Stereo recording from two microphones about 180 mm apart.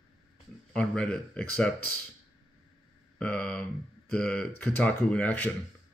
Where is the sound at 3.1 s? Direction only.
5° left (ahead or behind).